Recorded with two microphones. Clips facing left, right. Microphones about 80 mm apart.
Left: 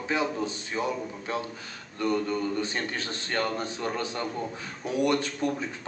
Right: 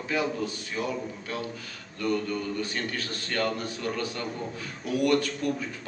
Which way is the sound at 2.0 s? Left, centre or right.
Left.